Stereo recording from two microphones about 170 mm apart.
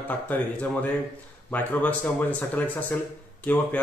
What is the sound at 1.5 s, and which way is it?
Speech, 10° left (ahead or behind).